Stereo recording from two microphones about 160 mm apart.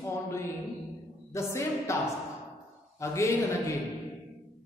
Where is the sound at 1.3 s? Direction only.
20° left (ahead or behind).